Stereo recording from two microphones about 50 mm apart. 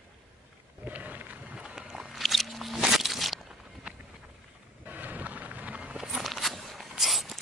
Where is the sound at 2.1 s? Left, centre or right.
Centre.